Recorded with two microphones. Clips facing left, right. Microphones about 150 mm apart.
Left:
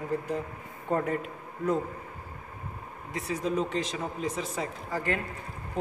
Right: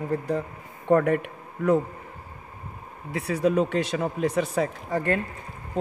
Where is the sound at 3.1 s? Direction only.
65° right (ahead or behind).